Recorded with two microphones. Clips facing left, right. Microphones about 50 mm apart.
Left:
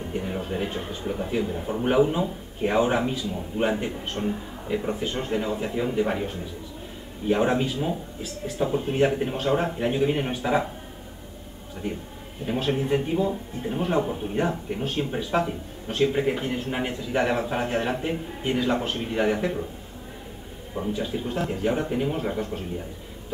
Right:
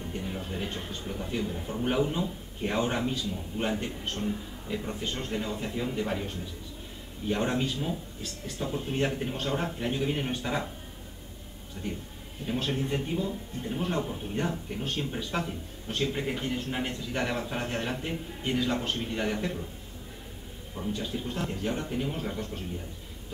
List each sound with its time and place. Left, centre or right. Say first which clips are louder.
0.0 s a sound: left 6 dB; left
1.0 s a man's voice: left 10 dB; left
1.9 s speech: left 7 dB; centre
4.2 s a man's voice: left 6 dB; left
12.4 s speech: left 6 dB; centre
20.9 s speech: left 5 dB; centre